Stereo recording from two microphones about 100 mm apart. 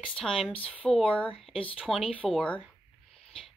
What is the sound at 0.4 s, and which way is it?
Speech, 65° left (ahead or behind).